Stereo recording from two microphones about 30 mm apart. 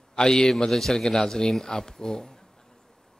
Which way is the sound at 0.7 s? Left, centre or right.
Centre.